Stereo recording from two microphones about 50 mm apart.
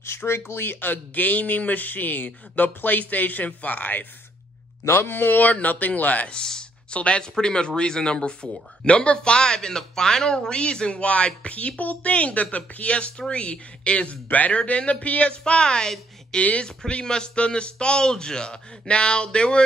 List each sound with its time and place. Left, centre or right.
0.0 s speech: left
4.8 s speech: left
6.3 s speech: centre
16.6 s speech: centre